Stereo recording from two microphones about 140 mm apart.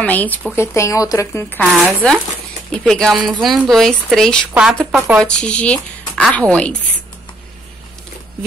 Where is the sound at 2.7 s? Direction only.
5° left (ahead or behind).